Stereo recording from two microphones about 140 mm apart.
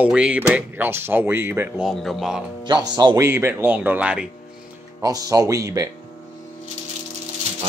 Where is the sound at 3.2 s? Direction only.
15° right (ahead or behind).